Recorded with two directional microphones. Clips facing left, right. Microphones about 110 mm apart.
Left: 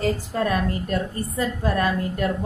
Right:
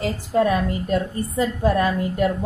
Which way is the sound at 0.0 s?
15° right (ahead or behind).